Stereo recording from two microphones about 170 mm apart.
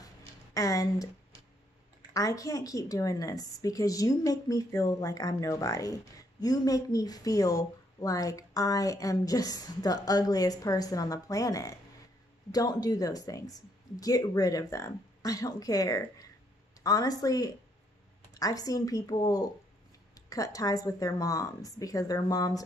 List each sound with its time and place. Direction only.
0.6 s a woman's voice: 20° left (ahead or behind)
2.1 s a woman's voice: 20° left (ahead or behind)